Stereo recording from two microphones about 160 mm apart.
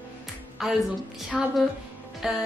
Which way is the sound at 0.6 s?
Centre (ahead or behind).